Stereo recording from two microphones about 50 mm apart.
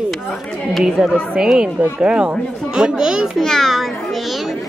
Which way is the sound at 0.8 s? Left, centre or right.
Centre.